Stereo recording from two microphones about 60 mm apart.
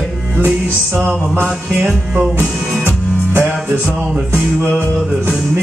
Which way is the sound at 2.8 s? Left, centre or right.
Right.